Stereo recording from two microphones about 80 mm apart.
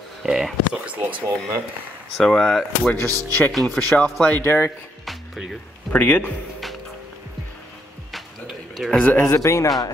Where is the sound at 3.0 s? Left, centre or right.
Right.